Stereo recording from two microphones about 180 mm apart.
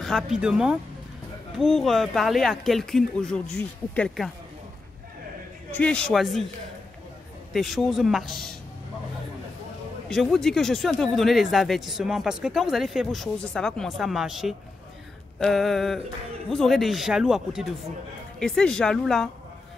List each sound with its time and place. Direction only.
0.0 s speech: centre (ahead or behind)
5.8 s speech: 5° left (ahead or behind)
7.5 s speech: centre (ahead or behind)
10.0 s speech: centre (ahead or behind)